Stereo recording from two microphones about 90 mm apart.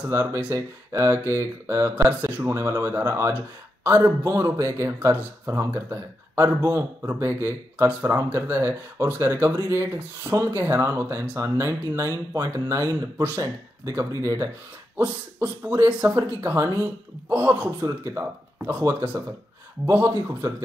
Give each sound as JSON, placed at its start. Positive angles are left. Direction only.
{"t": 0.1, "sound": "speech", "side_deg": -35}
{"t": 16.0, "sound": "speech", "side_deg": -30}
{"t": 17.6, "sound": "speech", "side_deg": -35}